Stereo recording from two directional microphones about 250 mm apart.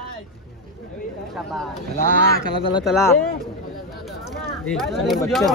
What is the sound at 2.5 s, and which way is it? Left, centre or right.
Speech, centre.